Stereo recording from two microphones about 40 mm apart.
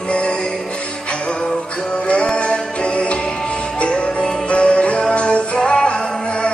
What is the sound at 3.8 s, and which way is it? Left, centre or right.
Music, left.